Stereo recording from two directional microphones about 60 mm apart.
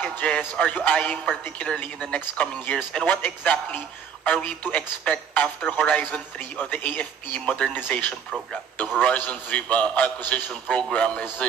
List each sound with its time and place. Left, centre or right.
0.0 s music: left
0.6 s speech: left